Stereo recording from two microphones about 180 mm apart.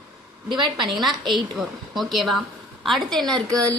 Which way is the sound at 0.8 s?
Centre (ahead or behind).